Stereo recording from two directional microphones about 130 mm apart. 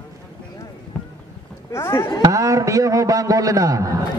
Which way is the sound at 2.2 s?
25° right (ahead or behind).